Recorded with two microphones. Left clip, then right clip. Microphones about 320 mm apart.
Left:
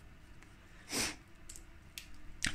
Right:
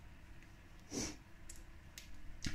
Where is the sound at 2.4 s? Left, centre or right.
Left.